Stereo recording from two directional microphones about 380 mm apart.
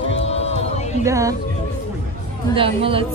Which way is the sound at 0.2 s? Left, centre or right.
Centre.